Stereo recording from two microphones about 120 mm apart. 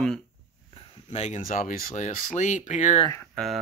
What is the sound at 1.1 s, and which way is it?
Speech, 65° left (ahead or behind).